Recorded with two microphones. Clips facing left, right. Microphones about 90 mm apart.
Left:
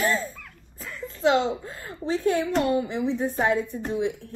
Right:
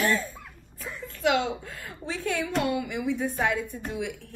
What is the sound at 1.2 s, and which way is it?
A woman's voice, 30° left (ahead or behind).